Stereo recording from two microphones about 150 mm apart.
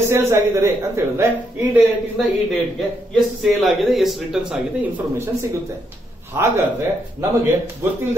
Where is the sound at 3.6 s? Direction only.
Centre (ahead or behind).